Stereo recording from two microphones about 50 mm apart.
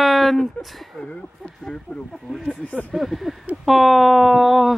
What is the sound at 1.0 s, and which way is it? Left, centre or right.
Speech, centre.